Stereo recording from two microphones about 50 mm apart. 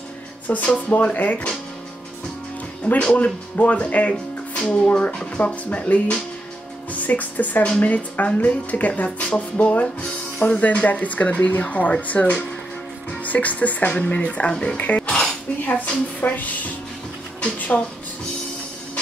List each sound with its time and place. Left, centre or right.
0.5 s speech: left
2.8 s speech: left
16.2 s speech: left